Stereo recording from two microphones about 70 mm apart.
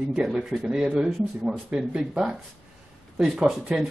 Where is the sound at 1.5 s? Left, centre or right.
Centre.